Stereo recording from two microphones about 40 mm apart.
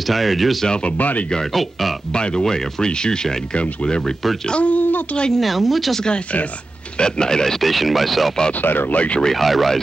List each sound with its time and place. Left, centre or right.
0.0 s speech: centre
0.7 s speech: left
0.9 s speech: left
1.5 s speech: centre
2.1 s speech: left
3.5 s speech: left
5.4 s speech: centre
5.9 s speech: left
7.6 s speech: centre
8.5 s speech: left
8.9 s speech: left
9.2 s speech: centre